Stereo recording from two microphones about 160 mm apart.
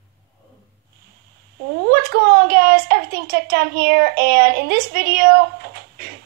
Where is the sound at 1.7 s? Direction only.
80° right.